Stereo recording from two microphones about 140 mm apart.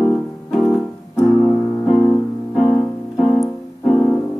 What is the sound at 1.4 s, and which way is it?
Keyboard, 5° left (ahead or behind).